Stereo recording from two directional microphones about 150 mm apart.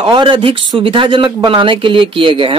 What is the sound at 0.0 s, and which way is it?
Speech, 30° right (ahead or behind).